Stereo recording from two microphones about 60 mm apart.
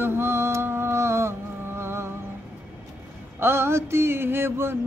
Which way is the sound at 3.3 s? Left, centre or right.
Right.